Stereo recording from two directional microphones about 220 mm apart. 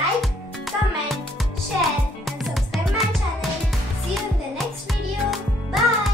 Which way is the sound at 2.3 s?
Centre (ahead or behind).